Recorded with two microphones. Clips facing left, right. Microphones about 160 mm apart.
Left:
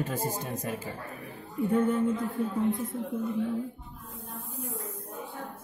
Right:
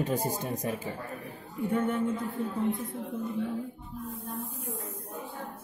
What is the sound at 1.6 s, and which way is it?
Speech, centre (ahead or behind).